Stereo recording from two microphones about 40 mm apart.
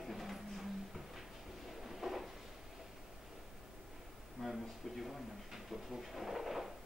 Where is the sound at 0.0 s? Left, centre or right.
Centre.